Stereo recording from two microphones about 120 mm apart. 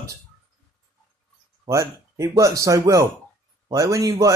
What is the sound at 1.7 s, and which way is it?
Speech, 25° right (ahead or behind).